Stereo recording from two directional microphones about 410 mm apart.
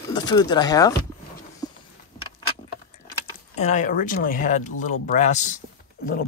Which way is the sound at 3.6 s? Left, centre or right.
Centre.